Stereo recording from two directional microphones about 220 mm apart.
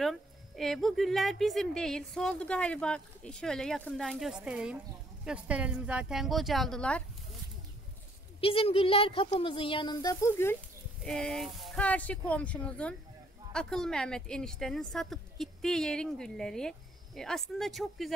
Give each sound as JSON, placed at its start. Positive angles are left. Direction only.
{"t": 0.0, "sound": "speech", "side_deg": 0}
{"t": 8.4, "sound": "a woman's voice", "side_deg": 25}
{"t": 11.1, "sound": "speech", "side_deg": 0}